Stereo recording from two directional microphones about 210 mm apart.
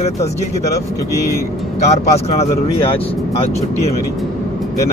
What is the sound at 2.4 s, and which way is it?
Speech, 25° left (ahead or behind).